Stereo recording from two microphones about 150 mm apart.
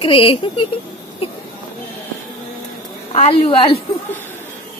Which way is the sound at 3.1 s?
40° left (ahead or behind).